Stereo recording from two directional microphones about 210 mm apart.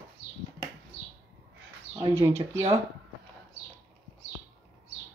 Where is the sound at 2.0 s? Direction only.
10° right (ahead or behind).